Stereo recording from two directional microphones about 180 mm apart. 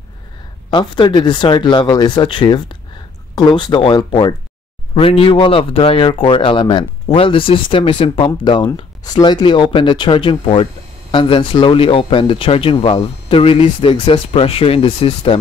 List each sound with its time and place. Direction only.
0.7 s speech: 25° left (ahead or behind)